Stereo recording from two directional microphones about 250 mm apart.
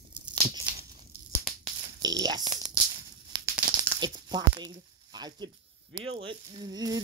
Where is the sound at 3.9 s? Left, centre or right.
Centre.